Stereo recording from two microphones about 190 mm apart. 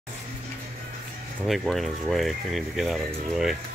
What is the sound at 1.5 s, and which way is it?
Speech, centre (ahead or behind).